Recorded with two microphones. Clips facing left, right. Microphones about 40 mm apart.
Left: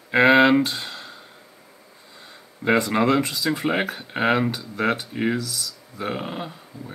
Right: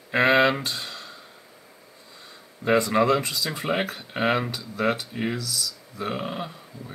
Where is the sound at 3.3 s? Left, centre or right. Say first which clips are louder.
Left 4 dB; centre.